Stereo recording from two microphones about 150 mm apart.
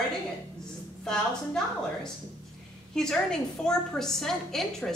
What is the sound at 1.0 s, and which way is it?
A woman's voice, 5° left (ahead or behind).